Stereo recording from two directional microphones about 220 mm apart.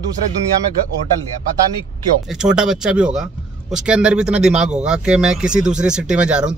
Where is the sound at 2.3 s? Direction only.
5° right (ahead or behind).